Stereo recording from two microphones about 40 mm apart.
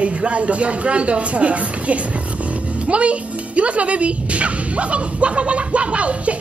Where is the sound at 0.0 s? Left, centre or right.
Right.